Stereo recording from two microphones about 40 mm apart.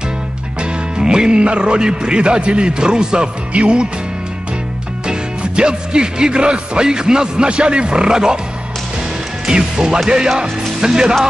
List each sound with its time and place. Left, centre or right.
0.6 s speech: right
3.5 s music: right
5.0 s music: right
9.5 s music: right
10.0 s speech: centre